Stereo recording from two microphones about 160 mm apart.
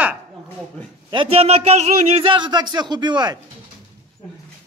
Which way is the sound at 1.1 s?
40° right (ahead or behind).